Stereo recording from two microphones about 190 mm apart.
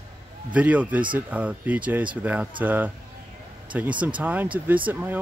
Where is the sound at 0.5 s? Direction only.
10° right (ahead or behind).